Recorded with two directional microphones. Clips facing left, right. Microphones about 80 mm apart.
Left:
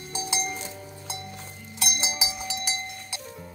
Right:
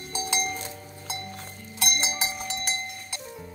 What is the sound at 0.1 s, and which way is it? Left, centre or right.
Music, right.